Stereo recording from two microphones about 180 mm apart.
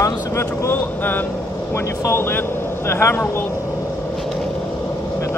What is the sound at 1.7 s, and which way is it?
Speech, 15° left (ahead or behind).